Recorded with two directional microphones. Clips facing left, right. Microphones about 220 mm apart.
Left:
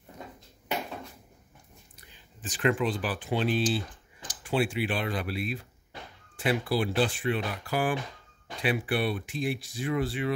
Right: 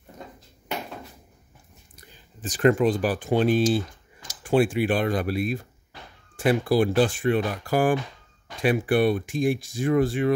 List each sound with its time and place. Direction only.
2.0 s speech: 40° right (ahead or behind)